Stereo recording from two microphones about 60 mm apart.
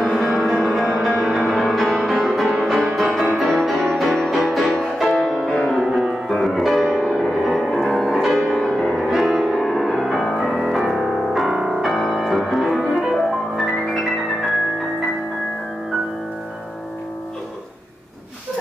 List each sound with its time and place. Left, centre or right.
0.0 s music: centre
5.9 s music: centre
6.2 s music: centre
11.8 s music: centre